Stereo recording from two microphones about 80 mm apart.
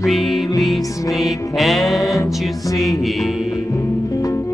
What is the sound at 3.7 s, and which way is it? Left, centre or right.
Music, left.